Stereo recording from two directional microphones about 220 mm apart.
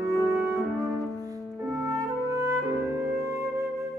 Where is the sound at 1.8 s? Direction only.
15° right (ahead or behind).